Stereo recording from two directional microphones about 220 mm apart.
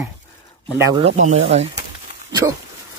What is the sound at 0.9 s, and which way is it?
Speech, 30° right (ahead or behind).